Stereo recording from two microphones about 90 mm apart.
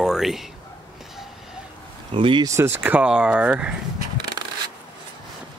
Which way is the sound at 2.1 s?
70° right (ahead or behind).